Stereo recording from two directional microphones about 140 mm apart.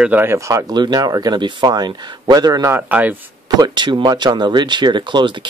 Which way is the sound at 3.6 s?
35° right (ahead or behind).